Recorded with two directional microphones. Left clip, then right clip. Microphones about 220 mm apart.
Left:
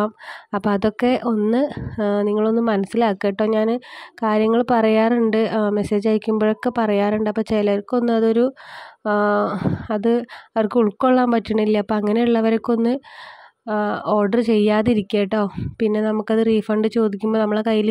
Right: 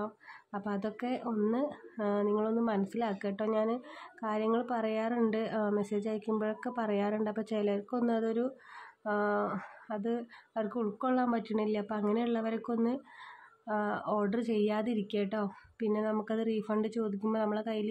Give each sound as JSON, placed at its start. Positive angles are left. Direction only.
{"t": 0.0, "sound": "speech", "side_deg": 40}